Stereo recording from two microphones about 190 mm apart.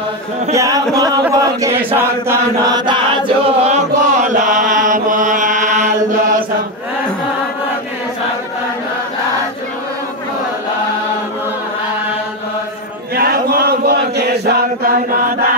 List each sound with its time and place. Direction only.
0.6 s a sound: 15° right (ahead or behind)
1.2 s chant: 15° right (ahead or behind); by 5.9 s 40° right (ahead or behind)
13.1 s chant: 55° right (ahead or behind)